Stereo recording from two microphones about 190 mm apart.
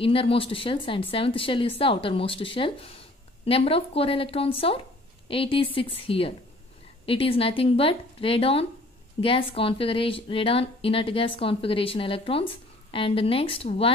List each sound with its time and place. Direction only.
0.0 s a woman's voice: 30° left (ahead or behind)